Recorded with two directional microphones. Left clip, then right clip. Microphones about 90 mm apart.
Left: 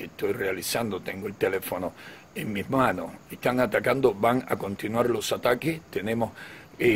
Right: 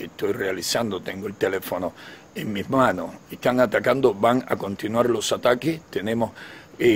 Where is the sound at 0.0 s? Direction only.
35° right (ahead or behind).